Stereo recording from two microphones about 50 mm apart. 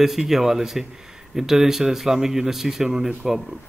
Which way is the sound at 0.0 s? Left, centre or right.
Centre.